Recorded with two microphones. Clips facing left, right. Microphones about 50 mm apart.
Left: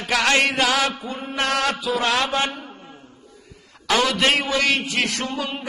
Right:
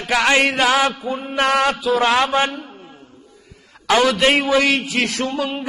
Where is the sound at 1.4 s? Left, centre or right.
Right.